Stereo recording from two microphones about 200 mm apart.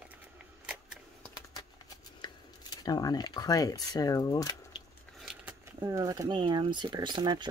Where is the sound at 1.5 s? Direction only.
20° left (ahead or behind).